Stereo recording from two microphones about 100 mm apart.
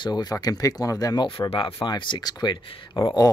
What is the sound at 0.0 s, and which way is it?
Speech, 45° left (ahead or behind).